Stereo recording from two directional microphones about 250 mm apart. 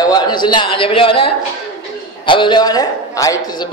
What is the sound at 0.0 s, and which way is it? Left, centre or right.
A man's voice, centre.